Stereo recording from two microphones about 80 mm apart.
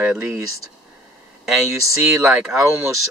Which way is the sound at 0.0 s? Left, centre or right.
Centre.